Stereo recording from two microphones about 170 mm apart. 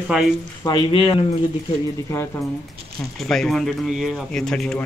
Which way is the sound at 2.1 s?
15° left (ahead or behind).